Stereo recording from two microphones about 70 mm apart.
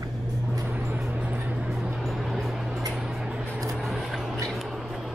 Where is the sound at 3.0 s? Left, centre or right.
Centre.